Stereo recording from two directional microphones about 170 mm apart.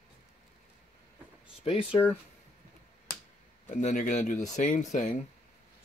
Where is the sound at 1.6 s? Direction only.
35° left (ahead or behind).